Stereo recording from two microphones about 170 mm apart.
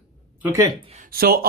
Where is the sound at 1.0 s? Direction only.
60° right (ahead or behind).